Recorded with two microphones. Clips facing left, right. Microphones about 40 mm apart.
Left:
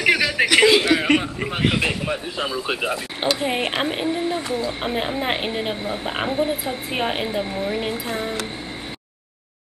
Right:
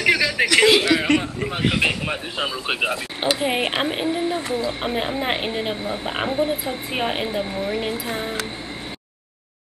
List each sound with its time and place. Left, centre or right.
0.0 s a man's voice: centre
1.8 s speech: right
3.2 s a woman's voice: centre
4.4 s speech: right
4.8 s a woman's voice: centre